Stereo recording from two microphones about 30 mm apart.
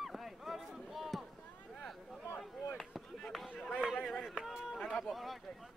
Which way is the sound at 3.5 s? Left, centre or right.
Left.